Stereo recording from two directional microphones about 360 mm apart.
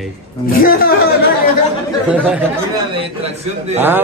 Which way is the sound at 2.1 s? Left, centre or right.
Centre.